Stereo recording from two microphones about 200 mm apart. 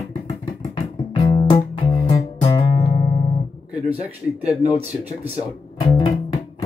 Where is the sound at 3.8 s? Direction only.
30° right (ahead or behind).